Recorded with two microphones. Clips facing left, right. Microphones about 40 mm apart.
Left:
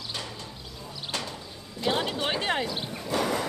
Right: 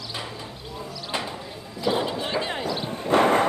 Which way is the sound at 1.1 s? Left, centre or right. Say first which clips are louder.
Right 5 dB; right.